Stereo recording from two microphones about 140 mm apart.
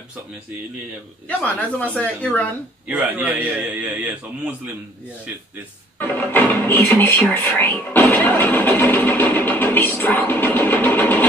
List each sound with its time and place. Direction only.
1.4 s speech: 10° left (ahead or behind)
2.9 s a man's voice: 10° right (ahead or behind)
5.9 s speech: 10° left (ahead or behind)
7.9 s music: 15° left (ahead or behind)